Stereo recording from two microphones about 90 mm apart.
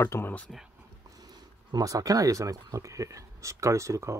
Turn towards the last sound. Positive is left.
turn(degrees=-35)  # may be behind; listen again after turning